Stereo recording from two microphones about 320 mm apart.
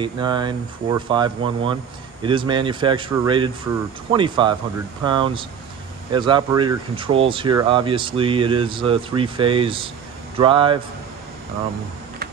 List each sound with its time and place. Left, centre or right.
0.0 s speech: centre